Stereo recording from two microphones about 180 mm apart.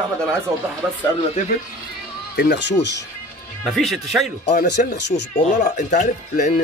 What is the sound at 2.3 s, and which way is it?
Speech, 70° left (ahead or behind).